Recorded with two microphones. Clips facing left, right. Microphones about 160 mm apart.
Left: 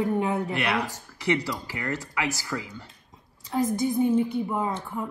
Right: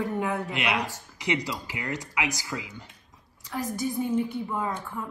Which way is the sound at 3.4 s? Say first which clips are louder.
Left 5 dB; 25° left (ahead or behind).